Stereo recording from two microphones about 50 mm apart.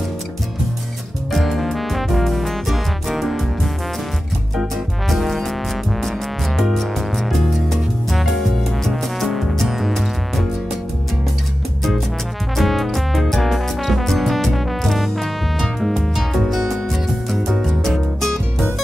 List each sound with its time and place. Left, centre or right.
1.3 s music: centre
12.5 s music: centre